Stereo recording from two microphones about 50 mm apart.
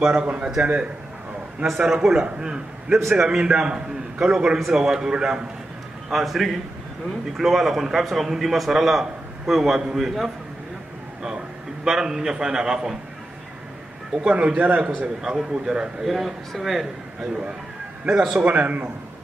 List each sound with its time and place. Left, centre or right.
0.0 s a man's voice: right
1.9 s a man's voice: centre
6.1 s a man's voice: centre
11.8 s a man's voice: centre
14.2 s a man's voice: right
15.2 s a man's voice: centre
16.1 s a man's voice: centre
18.0 s a man's voice: centre